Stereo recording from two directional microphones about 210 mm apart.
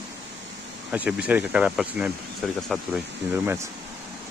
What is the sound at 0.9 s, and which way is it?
Speech, 5° right (ahead or behind).